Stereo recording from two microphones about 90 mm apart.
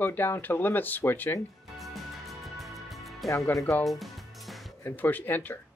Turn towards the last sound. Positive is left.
turn(degrees=20)  # may be behind; listen again after turning